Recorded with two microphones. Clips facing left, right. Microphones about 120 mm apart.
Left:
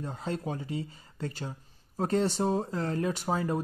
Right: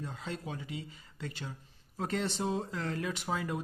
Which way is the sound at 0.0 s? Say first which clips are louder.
Left 6 dB; 40° left (ahead or behind).